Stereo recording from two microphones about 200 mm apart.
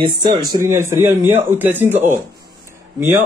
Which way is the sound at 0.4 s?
15° right (ahead or behind).